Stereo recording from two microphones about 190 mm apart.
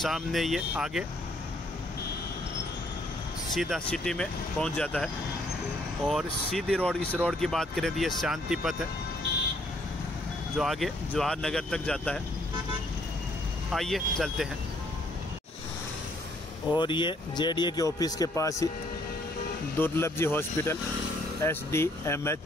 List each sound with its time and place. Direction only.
0.0 s speech: centre (ahead or behind)
3.5 s speech: centre (ahead or behind)
10.6 s speech: centre (ahead or behind)
13.7 s speech: centre (ahead or behind)
16.7 s speech: 25° left (ahead or behind)
19.8 s speech: 10° left (ahead or behind)